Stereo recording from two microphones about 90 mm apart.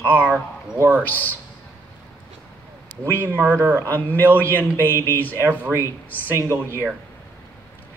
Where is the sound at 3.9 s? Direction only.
20° left (ahead or behind).